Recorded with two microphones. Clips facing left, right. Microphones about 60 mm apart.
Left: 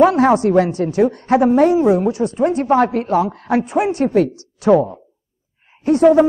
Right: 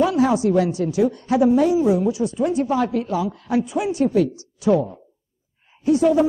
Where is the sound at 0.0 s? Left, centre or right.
Left.